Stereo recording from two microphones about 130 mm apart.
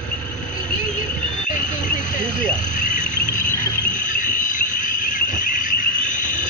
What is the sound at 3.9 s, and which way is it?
Insect, 85° left.